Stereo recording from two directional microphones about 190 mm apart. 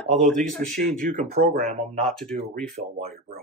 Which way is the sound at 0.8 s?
45° right (ahead or behind).